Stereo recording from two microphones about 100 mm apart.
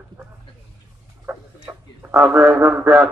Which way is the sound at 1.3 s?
25° right (ahead or behind).